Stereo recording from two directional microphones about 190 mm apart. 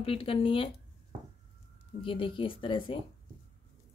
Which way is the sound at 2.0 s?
25° left (ahead or behind).